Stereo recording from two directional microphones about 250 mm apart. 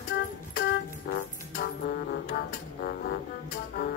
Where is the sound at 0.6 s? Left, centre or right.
Left.